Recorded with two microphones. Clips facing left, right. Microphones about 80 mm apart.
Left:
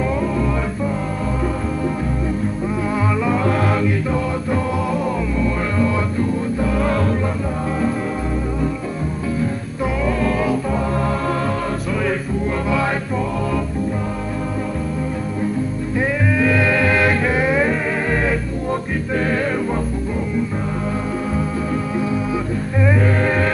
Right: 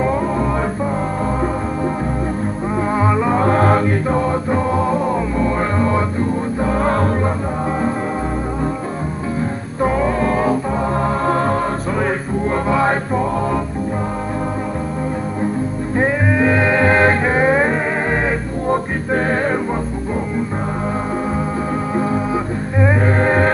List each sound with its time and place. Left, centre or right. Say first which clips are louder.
0.0 s music: right 2 dB; right
2.9 s music: right 4 dB; right
9.8 s music: right 4 dB; right
12.6 s music: right 4 dB; right
16.0 s music: right 3 dB; right
21.9 s music: right 4 dB; right